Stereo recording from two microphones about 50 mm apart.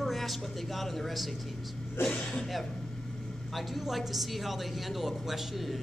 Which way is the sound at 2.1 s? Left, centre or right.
Centre.